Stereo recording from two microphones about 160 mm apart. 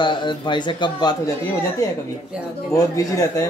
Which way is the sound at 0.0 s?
30° left (ahead or behind).